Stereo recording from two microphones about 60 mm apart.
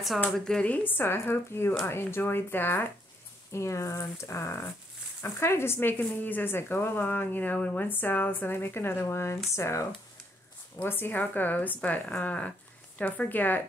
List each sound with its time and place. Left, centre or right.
0.7 s speech: left
3.5 s speech: left
5.9 s speech: left
10.9 s speech: left